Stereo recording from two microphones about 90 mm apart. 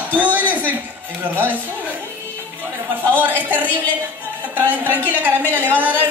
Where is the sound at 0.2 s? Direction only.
20° right (ahead or behind).